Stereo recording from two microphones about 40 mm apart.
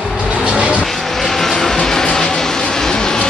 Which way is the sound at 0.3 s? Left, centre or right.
Right.